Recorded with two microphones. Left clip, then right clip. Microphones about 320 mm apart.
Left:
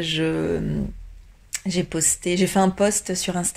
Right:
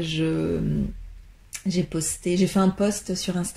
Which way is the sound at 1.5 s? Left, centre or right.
Left.